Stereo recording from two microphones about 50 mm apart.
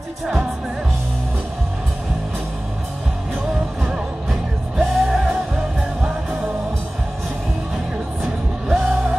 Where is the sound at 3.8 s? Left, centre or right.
Centre.